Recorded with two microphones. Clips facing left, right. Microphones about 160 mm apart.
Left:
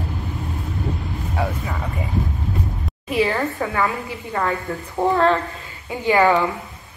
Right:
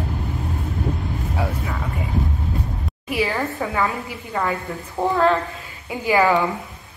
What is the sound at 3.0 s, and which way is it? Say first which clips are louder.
Speech: left 3 dB; 5° right (ahead or behind).